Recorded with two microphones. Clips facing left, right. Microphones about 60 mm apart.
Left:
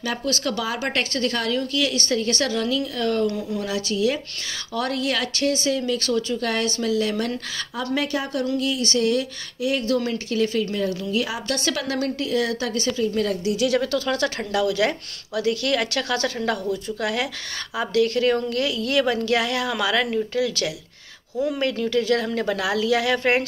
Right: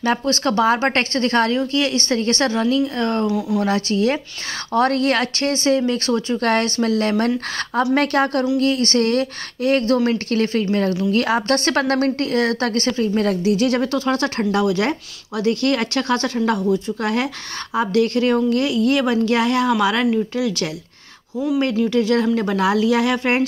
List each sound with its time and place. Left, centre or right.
0.0 s speech: right
3.4 s speech: right
3.7 s a woman's voice: right
6.4 s a woman's voice: right
7.9 s speech: right
8.5 s a woman's voice: right
13.4 s speech: right
13.7 s speech: right
21.9 s speech: right
22.6 s speech: right